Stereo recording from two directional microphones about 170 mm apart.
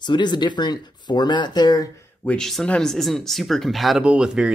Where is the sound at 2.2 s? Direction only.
5° left (ahead or behind).